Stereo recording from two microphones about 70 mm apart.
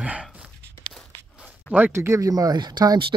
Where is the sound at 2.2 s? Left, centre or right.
Right.